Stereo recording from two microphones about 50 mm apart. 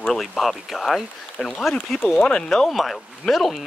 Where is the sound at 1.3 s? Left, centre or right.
Centre.